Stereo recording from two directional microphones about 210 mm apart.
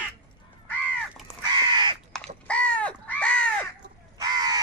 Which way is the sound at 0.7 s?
5° left (ahead or behind).